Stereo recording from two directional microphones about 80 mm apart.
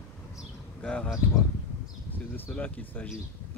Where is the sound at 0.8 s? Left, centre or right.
Centre.